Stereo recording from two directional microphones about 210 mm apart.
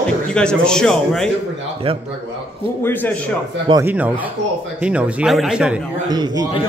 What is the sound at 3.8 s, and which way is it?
A man's voice, 10° right (ahead or behind).